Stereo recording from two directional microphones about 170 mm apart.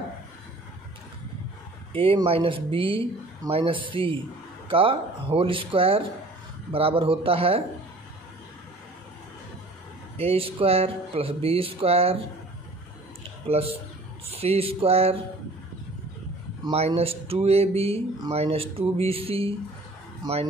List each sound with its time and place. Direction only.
1.9 s speech: 35° right (ahead or behind)
10.1 s speech: 35° right (ahead or behind)
13.5 s speech: 35° right (ahead or behind)
16.7 s speech: 35° right (ahead or behind)